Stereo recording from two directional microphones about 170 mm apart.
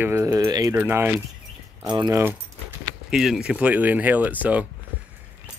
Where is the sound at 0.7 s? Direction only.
10° right (ahead or behind).